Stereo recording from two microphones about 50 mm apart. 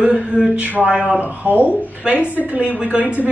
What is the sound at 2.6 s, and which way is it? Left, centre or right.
Speech, right.